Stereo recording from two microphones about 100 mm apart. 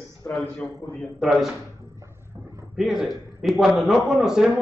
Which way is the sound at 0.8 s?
40° left (ahead or behind).